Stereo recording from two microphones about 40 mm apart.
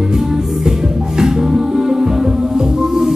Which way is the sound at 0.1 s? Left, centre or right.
Centre.